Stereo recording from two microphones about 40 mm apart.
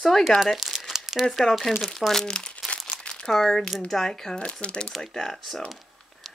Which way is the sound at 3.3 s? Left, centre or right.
Centre.